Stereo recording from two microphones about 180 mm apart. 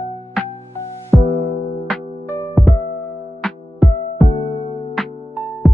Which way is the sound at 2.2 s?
15° left (ahead or behind).